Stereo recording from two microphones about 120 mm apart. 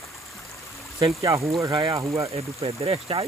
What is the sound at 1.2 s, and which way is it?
Speech, 30° right (ahead or behind).